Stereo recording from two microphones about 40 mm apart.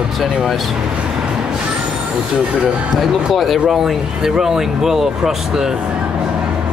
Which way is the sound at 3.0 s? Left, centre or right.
Centre.